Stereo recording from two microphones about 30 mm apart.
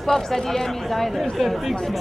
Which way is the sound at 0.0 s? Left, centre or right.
Centre.